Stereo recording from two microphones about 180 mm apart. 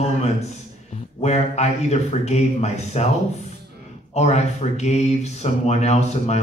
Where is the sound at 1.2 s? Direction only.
35° left (ahead or behind).